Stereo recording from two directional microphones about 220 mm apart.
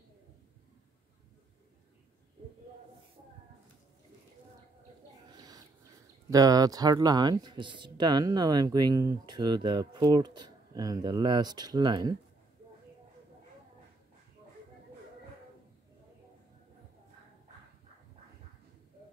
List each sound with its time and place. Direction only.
6.3 s speech: 15° right (ahead or behind)